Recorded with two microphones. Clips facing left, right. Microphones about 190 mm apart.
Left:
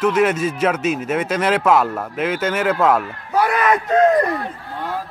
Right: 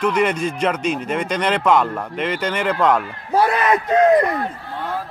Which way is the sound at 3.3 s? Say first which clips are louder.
Even; 30° right (ahead or behind).